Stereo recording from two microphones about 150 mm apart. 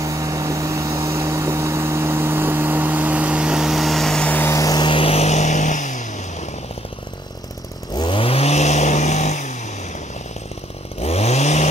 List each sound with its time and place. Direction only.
0.0 s vehicle: 20° right (ahead or behind); by 6.5 s 55° left (ahead or behind)
7.9 s vehicle: 30° left (ahead or behind); by 9.6 s 50° left (ahead or behind)
11.0 s chainsaw: 45° left (ahead or behind)